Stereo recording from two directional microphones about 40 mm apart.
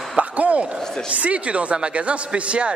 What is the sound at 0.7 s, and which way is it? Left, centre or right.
Speech, centre.